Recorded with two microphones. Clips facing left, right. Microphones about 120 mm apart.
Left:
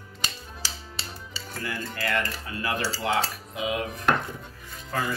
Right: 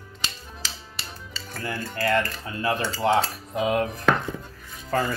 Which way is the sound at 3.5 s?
45° right (ahead or behind).